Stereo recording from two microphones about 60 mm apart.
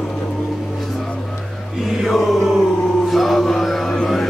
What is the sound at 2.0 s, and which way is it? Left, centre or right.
Chant, centre.